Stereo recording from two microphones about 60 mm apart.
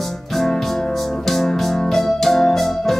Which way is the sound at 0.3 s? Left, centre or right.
Centre.